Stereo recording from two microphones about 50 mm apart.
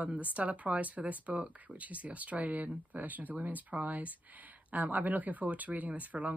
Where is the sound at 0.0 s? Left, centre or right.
Right.